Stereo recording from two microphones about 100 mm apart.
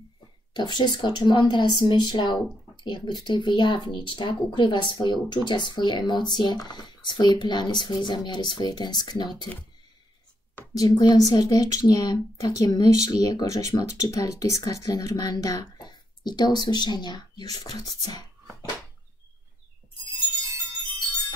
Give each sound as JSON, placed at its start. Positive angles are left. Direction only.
{"t": 0.5, "sound": "speech", "side_deg": 45}
{"t": 10.8, "sound": "speech", "side_deg": 45}